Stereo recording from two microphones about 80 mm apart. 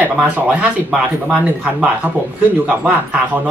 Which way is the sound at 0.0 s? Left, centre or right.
Centre.